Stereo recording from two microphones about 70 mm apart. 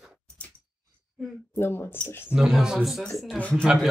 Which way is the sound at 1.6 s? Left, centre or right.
Left.